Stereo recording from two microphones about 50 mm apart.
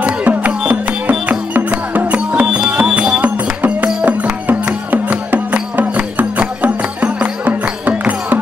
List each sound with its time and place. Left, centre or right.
0.0 s music: right